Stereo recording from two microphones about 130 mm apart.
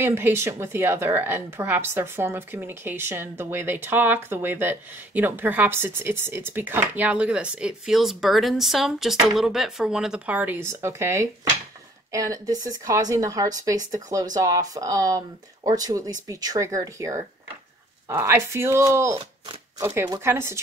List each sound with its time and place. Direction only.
0.0 s speech: 20° right (ahead or behind)